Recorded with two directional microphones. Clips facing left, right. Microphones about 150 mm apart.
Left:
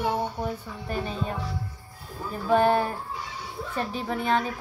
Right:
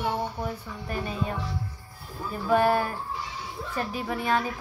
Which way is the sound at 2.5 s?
30° left (ahead or behind).